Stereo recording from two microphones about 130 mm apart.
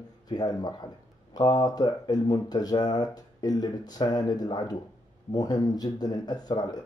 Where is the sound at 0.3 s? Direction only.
30° left (ahead or behind).